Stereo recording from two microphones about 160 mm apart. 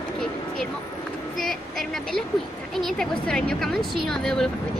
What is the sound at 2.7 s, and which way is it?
A woman's voice, centre (ahead or behind).